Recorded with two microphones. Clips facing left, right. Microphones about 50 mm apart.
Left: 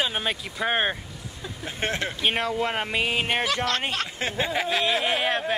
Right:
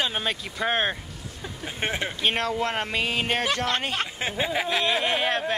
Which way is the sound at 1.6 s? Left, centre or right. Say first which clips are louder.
Even; centre.